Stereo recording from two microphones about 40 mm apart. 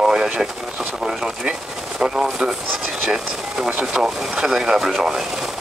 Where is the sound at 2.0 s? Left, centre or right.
Right.